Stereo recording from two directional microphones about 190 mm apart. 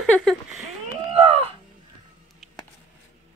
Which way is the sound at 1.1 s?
30° right (ahead or behind).